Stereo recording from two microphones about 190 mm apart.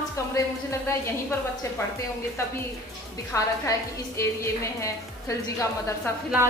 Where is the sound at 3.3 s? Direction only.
15° left (ahead or behind).